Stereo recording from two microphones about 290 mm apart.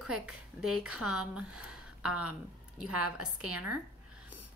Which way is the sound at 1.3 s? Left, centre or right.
Centre.